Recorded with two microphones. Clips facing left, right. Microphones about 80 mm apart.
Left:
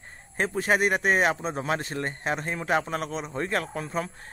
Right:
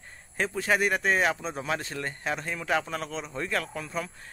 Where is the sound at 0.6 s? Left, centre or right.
Left.